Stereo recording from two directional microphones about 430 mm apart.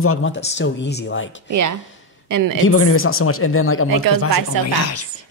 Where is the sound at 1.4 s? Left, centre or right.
Right.